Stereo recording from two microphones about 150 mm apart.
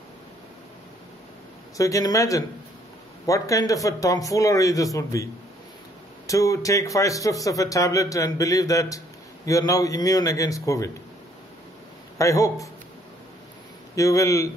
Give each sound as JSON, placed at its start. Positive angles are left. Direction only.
{"t": 1.8, "sound": "a man's voice", "side_deg": 20}
{"t": 12.2, "sound": "a man's voice", "side_deg": 20}
{"t": 13.9, "sound": "a man's voice", "side_deg": 20}